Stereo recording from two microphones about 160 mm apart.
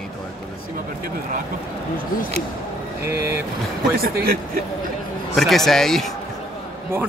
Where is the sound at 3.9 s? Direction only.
70° right (ahead or behind).